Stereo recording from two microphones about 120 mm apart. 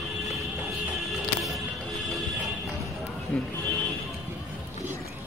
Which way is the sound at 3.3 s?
10° left (ahead or behind).